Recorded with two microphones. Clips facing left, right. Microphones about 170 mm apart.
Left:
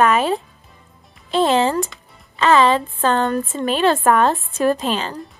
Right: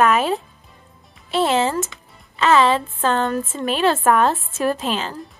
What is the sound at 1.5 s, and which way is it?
Speech, 35° left (ahead or behind).